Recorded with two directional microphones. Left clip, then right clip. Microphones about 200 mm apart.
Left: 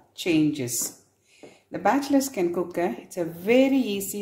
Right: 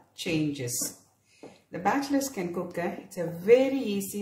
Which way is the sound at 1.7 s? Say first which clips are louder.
Left 5 dB; 50° left (ahead or behind).